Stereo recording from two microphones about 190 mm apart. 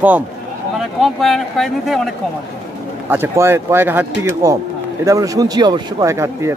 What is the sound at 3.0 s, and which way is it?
Speech, 10° right (ahead or behind).